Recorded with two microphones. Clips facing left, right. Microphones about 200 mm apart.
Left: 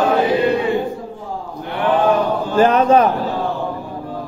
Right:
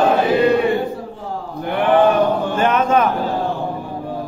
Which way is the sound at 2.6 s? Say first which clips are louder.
Left 6 dB; 35° left (ahead or behind).